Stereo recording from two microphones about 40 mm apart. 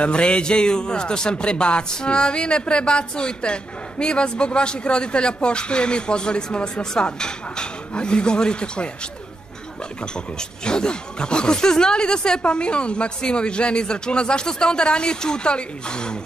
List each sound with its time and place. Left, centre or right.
0.0 s speech: left
10.1 s speech: left